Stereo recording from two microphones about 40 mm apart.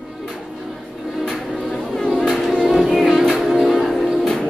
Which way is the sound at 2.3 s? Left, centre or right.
Centre.